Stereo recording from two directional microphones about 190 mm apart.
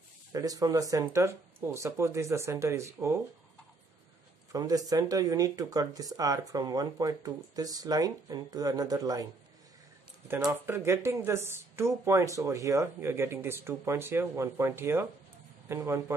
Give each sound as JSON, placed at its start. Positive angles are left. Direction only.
{"t": 0.3, "sound": "speech", "side_deg": -20}
{"t": 4.5, "sound": "speech", "side_deg": -20}